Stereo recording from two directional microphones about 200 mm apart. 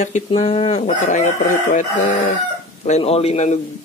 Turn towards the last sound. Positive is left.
turn(degrees=35)  # may be behind; listen again after turning